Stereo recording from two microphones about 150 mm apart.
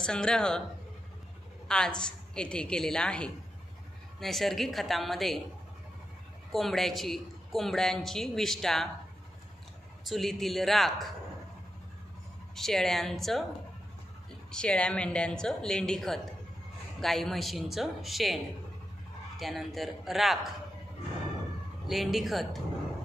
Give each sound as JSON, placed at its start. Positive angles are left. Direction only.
{"t": 0.0, "sound": "speech", "side_deg": 5}
{"t": 1.7, "sound": "speech", "side_deg": 5}
{"t": 6.5, "sound": "speech", "side_deg": 0}
{"t": 10.0, "sound": "speech", "side_deg": 0}
{"t": 12.5, "sound": "speech", "side_deg": 5}
{"t": 14.5, "sound": "speech", "side_deg": 5}
{"t": 21.8, "sound": "speech", "side_deg": 0}